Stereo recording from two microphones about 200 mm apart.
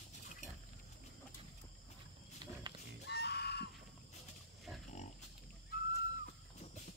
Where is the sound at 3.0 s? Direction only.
55° left (ahead or behind).